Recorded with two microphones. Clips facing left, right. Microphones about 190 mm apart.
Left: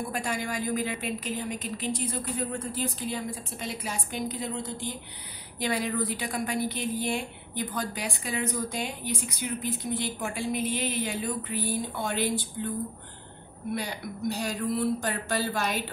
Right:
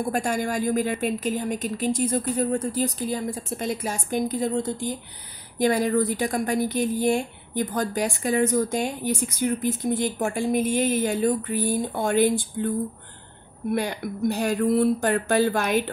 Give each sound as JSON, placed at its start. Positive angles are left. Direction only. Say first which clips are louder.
{"t": 0.1, "sound": "a woman's voice", "louder": "right 6 dB", "side_deg": -45}
{"t": 13.7, "sound": "a woman's voice", "louder": "right 8 dB", "side_deg": -55}